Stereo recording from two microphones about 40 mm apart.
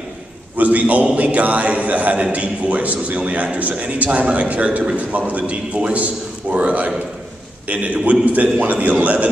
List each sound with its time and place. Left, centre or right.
0.6 s a man's voice: right